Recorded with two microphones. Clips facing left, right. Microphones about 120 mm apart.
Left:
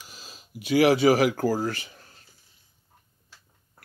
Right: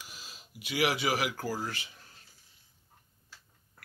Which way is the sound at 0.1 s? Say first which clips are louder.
Left 5 dB; 35° left (ahead or behind).